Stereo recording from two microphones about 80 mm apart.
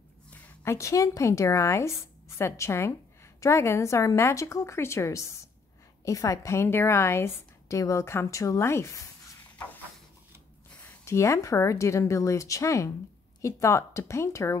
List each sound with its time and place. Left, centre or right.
0.7 s a woman's voice: left
11.1 s a woman's voice: left